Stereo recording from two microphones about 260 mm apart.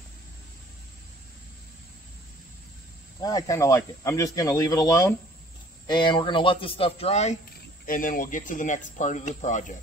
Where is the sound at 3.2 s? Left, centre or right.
Centre.